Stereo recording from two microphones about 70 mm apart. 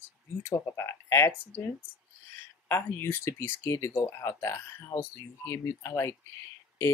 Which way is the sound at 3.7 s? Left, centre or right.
Left.